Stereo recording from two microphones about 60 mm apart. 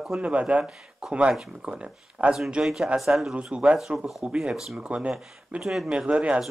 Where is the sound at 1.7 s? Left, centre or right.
Centre.